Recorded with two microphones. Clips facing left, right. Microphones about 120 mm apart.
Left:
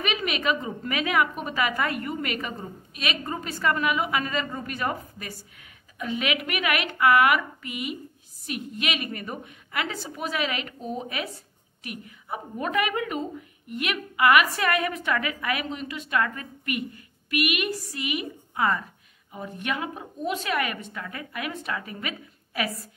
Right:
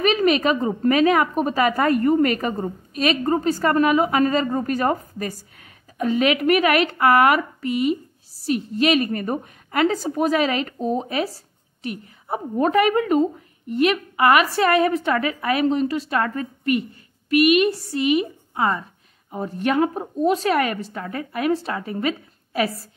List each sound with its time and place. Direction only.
0.0 s a woman's voice: 40° right (ahead or behind)